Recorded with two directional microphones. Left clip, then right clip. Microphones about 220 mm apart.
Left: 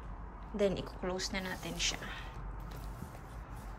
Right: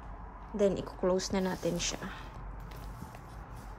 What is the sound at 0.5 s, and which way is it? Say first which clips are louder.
Speech: right 3 dB; 15° right (ahead or behind).